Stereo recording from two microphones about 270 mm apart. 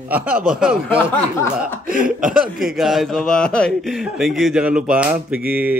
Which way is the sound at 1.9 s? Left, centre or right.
Right.